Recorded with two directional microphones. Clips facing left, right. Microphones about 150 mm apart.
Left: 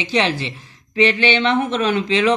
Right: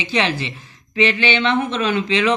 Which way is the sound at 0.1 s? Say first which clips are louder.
Left 1 dB; 35° left (ahead or behind).